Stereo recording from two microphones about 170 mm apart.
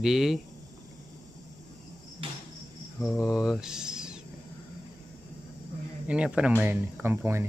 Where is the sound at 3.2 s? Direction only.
5° right (ahead or behind).